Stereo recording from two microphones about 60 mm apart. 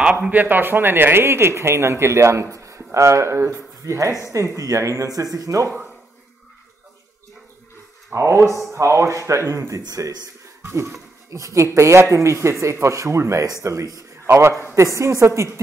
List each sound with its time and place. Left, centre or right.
0.0 s speech: right
8.1 s speech: right
10.6 s a man's voice: right